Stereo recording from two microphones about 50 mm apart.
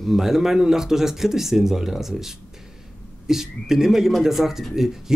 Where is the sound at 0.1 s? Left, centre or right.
Centre.